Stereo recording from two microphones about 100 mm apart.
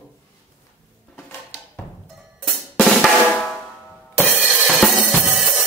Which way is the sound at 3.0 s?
5° left (ahead or behind).